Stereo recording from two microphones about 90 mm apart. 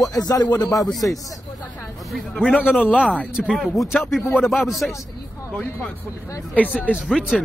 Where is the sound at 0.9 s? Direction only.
Centre (ahead or behind).